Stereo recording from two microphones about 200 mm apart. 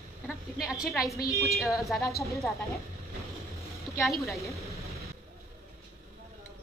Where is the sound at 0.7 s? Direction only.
Centre (ahead or behind).